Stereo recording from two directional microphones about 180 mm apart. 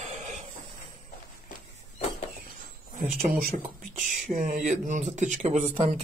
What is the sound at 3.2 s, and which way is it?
Speech, 50° right (ahead or behind).